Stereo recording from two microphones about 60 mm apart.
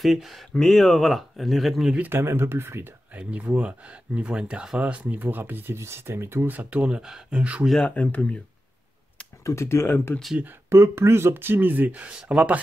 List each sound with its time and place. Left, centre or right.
0.0 s speech: centre
2.0 s speech: right
3.2 s speech: right
6.5 s speech: right
7.8 s speech: left
9.4 s speech: left
10.7 s speech: right
12.1 s speech: centre